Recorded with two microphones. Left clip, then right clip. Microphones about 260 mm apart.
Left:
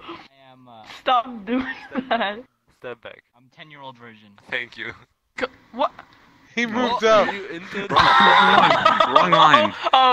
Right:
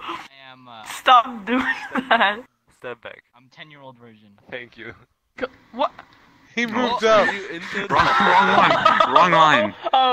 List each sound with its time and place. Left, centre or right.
0.0 s a sound: right
0.4 s a sound: right
0.8 s speech: right
2.8 s a sound: centre
4.0 s speech: left
5.7 s speech: centre
7.3 s speech: centre
7.8 s speech: centre
8.1 s snicker: centre
9.2 s speech: centre
9.6 s speech: left